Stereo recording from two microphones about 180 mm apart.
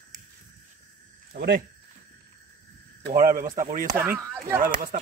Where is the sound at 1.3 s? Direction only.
55° right (ahead or behind).